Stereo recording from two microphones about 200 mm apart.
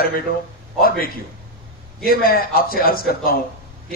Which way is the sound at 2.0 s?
45° left (ahead or behind).